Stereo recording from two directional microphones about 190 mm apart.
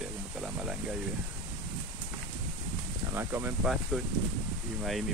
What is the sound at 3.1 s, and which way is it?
Speech, 10° right (ahead or behind).